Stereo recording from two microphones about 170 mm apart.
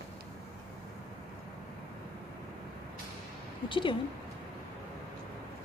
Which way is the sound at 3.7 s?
30° left (ahead or behind).